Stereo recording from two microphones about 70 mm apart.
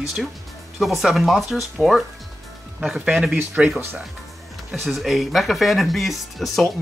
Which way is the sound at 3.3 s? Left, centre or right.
Right.